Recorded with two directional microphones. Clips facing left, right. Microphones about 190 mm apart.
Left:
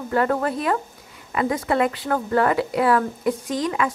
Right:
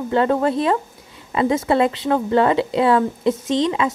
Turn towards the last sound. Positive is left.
turn(degrees=-25)  # may be behind; listen again after turning